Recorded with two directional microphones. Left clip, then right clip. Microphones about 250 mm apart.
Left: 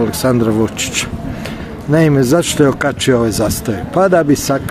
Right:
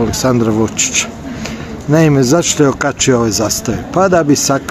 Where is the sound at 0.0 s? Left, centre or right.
Centre.